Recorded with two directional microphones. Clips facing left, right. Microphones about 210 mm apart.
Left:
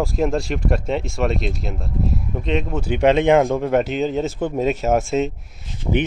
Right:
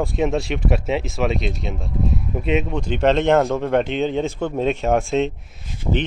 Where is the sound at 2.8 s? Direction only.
10° left (ahead or behind).